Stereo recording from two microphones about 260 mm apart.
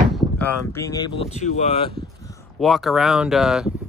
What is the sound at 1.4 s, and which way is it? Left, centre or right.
Speech, left.